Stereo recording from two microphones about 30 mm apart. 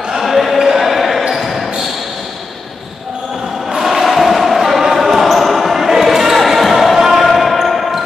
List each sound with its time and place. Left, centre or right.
0.2 s basketball bounce: centre
3.8 s basketball bounce: centre
7.0 s basketball bounce: centre
7.2 s basketball bounce: centre